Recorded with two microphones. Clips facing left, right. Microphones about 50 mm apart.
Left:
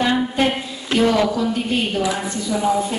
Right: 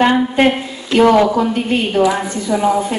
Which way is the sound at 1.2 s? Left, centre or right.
Right.